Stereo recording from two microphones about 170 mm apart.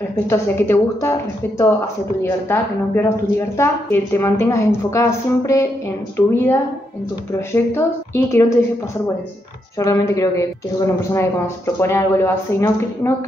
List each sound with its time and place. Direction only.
0.1 s a woman's voice: 15° left (ahead or behind)
9.8 s a woman's voice: 20° left (ahead or behind)